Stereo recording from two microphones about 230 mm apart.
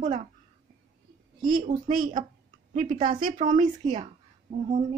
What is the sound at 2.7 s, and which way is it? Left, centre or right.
Speech, right.